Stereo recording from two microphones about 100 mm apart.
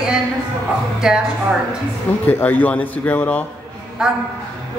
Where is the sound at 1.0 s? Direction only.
5° right (ahead or behind).